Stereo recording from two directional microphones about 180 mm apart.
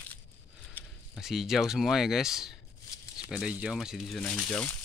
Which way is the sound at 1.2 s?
Centre (ahead or behind).